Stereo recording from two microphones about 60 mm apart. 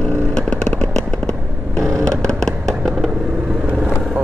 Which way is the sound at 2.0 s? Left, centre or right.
Centre.